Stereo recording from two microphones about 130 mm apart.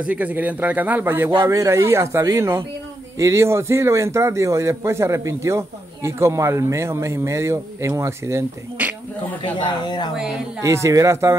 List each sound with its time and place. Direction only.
0.0 s a man's voice: 10° right (ahead or behind)
9.6 s speech: 35° left (ahead or behind)
10.6 s a man's voice: 25° right (ahead or behind)